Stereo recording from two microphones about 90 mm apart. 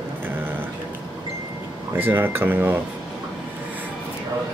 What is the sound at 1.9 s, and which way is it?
Speech, 25° right (ahead or behind).